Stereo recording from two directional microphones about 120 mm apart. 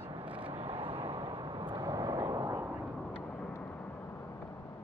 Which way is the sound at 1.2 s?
40° right (ahead or behind).